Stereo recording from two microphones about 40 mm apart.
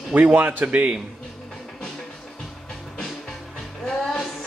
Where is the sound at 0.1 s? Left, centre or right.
Right.